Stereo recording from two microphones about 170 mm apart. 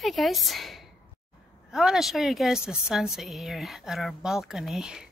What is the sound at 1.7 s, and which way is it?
A woman's voice, centre (ahead or behind).